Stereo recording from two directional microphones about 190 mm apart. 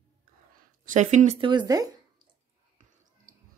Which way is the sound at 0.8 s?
40° right (ahead or behind).